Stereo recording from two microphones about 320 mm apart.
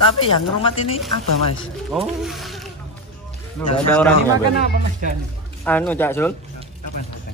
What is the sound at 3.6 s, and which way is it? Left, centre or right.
Speech, centre.